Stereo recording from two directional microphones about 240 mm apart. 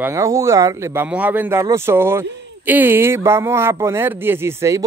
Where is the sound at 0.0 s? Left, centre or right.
Centre.